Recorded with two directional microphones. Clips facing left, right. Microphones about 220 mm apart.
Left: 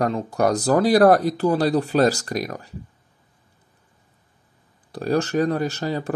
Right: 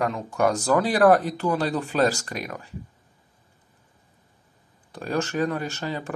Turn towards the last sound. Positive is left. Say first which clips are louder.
# left 5 dB
turn(degrees=35)  # may be behind; listen again after turning